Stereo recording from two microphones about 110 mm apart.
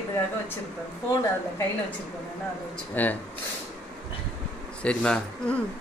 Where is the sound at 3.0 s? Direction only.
15° left (ahead or behind).